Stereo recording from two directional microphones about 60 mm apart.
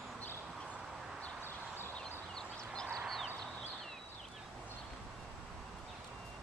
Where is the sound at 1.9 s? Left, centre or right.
Centre.